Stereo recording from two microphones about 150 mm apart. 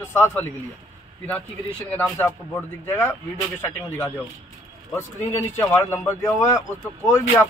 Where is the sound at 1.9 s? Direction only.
10° left (ahead or behind).